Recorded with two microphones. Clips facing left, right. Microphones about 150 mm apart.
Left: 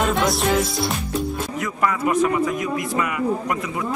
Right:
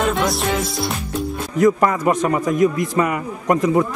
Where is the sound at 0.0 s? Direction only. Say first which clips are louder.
Right 1 dB; centre (ahead or behind).